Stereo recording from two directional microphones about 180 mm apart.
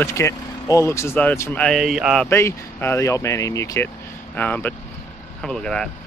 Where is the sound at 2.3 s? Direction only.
15° left (ahead or behind).